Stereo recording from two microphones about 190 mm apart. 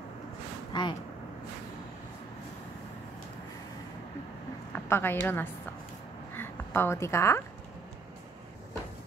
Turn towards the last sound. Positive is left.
turn(degrees=15)  # may be behind; listen again after turning